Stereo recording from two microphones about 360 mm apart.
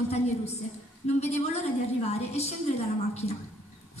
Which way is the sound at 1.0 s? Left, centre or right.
Centre.